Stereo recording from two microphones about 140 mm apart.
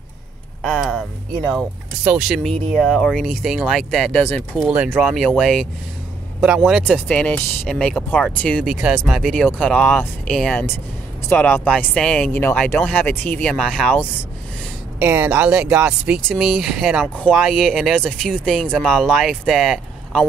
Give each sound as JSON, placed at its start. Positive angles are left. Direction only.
{"t": 0.6, "sound": "speech", "side_deg": 0}
{"t": 2.0, "sound": "speech", "side_deg": -5}
{"t": 4.6, "sound": "speech", "side_deg": -10}
{"t": 5.1, "sound": "speech", "side_deg": 0}
{"t": 6.9, "sound": "speech", "side_deg": 10}
{"t": 8.7, "sound": "speech", "side_deg": 0}
{"t": 15.0, "sound": "speech", "side_deg": -10}